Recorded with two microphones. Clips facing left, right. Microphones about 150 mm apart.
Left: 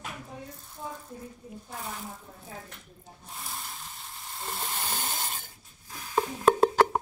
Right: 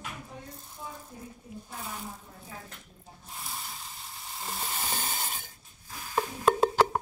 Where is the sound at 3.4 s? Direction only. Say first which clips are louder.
Even; centre (ahead or behind).